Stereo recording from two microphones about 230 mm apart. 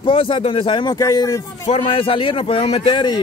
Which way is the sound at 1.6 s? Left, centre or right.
Left.